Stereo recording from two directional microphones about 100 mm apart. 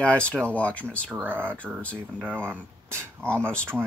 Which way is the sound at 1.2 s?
20° right (ahead or behind).